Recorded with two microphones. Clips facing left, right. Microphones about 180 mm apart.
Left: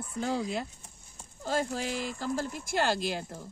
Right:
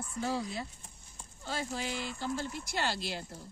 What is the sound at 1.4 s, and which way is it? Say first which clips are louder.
Speech: left 6 dB; 45° left (ahead or behind).